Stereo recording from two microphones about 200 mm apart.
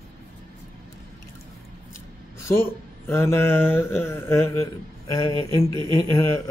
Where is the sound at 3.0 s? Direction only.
10° left (ahead or behind).